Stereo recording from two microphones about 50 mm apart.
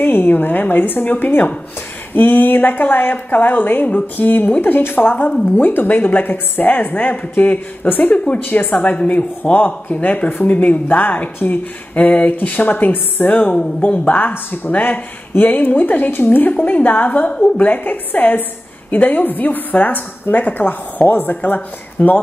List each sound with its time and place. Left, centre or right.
0.0 s a woman's voice: left
17.6 s a woman's voice: left